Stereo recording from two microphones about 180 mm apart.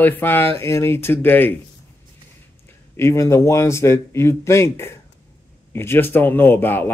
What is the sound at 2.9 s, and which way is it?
Speech, 15° left (ahead or behind).